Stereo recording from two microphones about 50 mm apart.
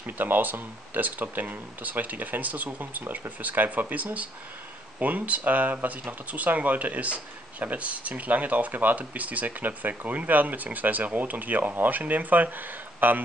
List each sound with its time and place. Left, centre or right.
0.0 s speech: right